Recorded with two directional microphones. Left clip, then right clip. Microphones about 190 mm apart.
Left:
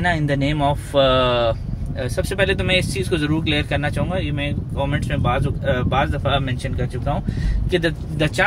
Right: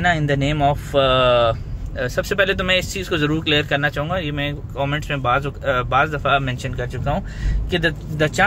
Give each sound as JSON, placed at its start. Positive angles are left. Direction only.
{"t": 0.0, "sound": "speech", "side_deg": -5}
{"t": 7.7, "sound": "a man's voice", "side_deg": -10}